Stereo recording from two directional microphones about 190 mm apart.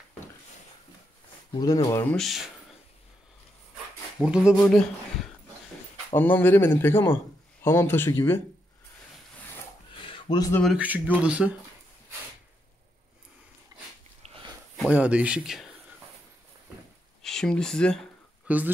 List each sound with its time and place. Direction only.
1.6 s a man's voice: 20° left (ahead or behind); by 2.5 s centre (ahead or behind)
4.5 s a man's voice: 5° left (ahead or behind)
10.0 s a sound: 25° left (ahead or behind)
10.6 s speech: 5° right (ahead or behind)
13.7 s dog: 20° right (ahead or behind)
14.2 s a sound: 35° right (ahead or behind)
14.9 s speech: 5° right (ahead or behind)
17.2 s speech: 5° left (ahead or behind)
18.5 s speech: 5° right (ahead or behind)